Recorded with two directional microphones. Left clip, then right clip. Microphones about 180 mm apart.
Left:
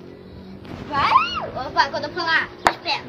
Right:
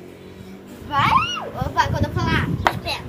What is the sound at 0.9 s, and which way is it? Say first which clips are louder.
A child's voice: even; 10° left (ahead or behind).